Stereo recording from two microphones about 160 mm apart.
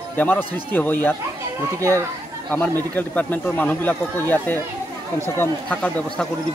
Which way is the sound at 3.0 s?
10° left (ahead or behind).